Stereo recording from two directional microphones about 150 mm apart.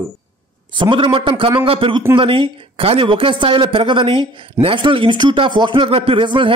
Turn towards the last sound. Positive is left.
turn(degrees=-35)  # may be behind; listen again after turning